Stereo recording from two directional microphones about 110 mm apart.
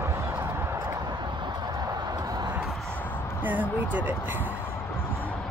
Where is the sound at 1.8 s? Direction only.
35° right (ahead or behind).